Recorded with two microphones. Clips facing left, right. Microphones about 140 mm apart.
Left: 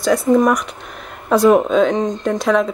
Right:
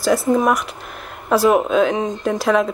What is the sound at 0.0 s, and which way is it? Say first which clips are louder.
Speech: left 2 dB; centre (ahead or behind).